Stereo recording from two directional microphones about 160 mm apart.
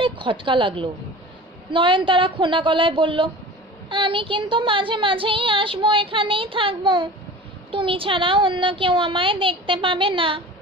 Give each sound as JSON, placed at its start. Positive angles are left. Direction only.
{"t": 0.0, "sound": "a woman's voice", "side_deg": -30}